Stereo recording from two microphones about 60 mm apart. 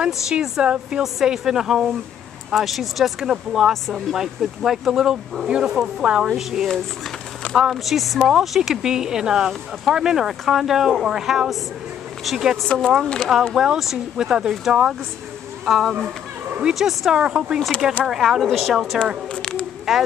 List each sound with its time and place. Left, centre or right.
0.0 s a woman's voice: centre
17.6 s speech: centre
18.0 s speech: centre
19.3 s a sound: centre
19.9 s speech: centre